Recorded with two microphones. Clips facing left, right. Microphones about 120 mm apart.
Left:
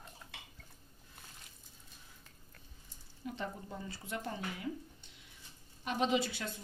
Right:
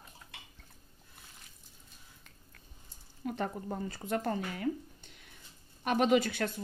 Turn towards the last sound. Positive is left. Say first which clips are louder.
# right 6 dB
turn(degrees=-55)  # may be behind; listen again after turning